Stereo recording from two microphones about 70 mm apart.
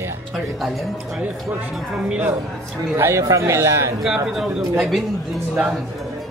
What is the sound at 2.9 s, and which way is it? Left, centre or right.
A man's voice, right.